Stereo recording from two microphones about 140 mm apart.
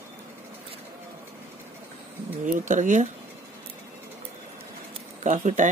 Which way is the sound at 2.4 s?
65° right (ahead or behind).